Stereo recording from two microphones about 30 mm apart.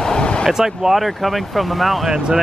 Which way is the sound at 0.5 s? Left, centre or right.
Centre.